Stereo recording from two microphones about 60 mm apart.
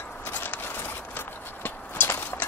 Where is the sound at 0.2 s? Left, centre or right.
Left.